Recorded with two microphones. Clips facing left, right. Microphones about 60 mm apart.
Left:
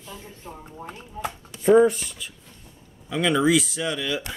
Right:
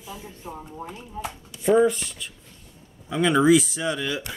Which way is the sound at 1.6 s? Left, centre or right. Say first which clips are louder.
Left 3 dB; centre.